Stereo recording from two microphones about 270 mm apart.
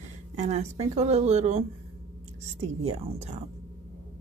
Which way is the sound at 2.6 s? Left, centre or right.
Right.